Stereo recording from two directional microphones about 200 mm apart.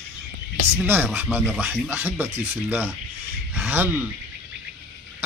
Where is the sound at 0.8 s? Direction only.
10° right (ahead or behind).